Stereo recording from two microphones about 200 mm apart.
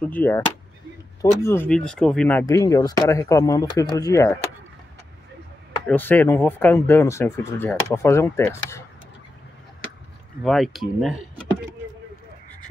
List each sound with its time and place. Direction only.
0.0 s speech: 10° left (ahead or behind)
5.9 s speech: 10° left (ahead or behind)
10.4 s speech: centre (ahead or behind)